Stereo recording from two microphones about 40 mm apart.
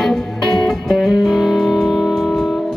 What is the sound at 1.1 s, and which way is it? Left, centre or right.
Music, centre.